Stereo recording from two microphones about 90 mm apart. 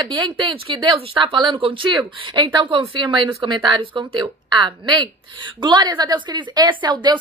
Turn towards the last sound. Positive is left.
turn(degrees=-55)  # may be behind; listen again after turning